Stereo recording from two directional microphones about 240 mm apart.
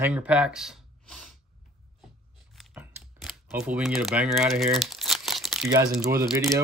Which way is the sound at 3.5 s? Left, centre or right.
Centre.